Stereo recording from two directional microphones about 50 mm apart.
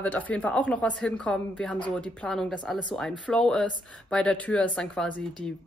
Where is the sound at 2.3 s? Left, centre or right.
Centre; by 4.9 s left.